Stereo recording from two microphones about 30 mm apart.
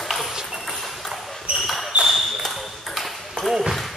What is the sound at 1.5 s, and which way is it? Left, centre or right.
Basketball bounce, right.